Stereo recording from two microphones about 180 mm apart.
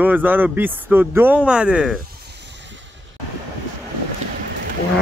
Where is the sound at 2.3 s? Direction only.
75° right (ahead or behind).